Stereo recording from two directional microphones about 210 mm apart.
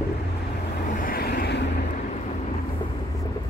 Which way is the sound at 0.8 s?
40° left (ahead or behind).